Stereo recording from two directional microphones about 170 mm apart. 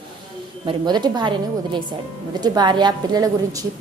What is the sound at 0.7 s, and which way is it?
A woman's voice, 25° right (ahead or behind).